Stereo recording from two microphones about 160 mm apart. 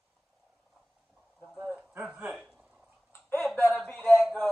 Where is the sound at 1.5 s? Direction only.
Centre (ahead or behind).